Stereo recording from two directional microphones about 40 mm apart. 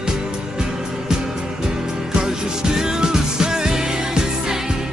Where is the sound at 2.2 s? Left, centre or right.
Centre.